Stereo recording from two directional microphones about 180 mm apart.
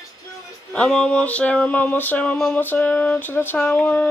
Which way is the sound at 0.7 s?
5° left (ahead or behind).